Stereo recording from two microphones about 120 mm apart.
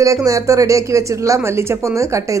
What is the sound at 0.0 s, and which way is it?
Speech, 25° right (ahead or behind).